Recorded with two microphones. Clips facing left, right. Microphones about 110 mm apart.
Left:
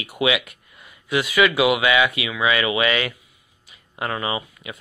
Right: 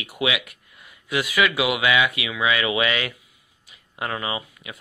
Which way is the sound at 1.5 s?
25° left (ahead or behind).